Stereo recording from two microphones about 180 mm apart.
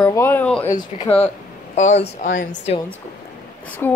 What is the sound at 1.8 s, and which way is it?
Speech, 40° left (ahead or behind).